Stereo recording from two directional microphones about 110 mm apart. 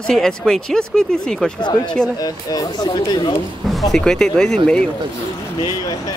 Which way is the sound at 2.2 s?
35° left (ahead or behind).